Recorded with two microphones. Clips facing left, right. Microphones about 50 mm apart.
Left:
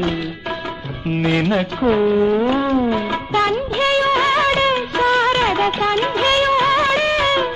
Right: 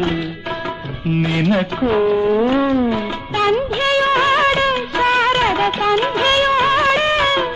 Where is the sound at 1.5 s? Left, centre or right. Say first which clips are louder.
Right 2 dB; right.